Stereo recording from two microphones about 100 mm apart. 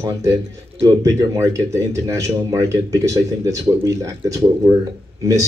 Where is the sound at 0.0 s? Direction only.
35° right (ahead or behind).